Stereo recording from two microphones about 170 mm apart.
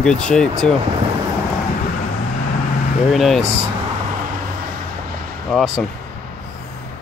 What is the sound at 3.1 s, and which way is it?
Speech, centre (ahead or behind).